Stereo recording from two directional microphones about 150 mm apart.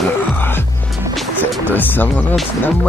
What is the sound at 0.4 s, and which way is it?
Music, 15° left (ahead or behind).